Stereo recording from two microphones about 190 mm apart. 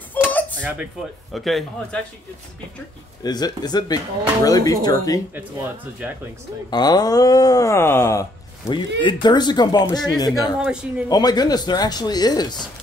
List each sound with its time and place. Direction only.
0.1 s a sound: 10° left (ahead or behind)
0.6 s a man's voice: 5° right (ahead or behind)
3.3 s a man's voice: 20° left (ahead or behind)
6.7 s a man's voice: 20° left (ahead or behind)
8.6 s a man's voice: 25° left (ahead or behind)
10.6 s a man's voice: 5° right (ahead or behind)
11.1 s a man's voice: 20° left (ahead or behind)